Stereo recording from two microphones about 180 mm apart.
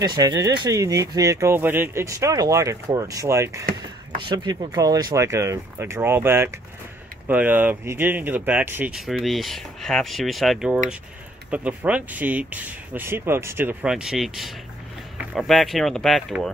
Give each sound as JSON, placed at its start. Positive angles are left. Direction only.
{"t": 0.0, "sound": "speech", "side_deg": -20}